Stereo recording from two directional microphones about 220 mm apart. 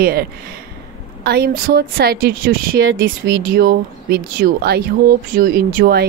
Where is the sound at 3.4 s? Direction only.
45° right (ahead or behind).